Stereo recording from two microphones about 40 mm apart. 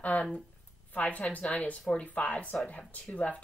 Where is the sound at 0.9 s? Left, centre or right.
Left.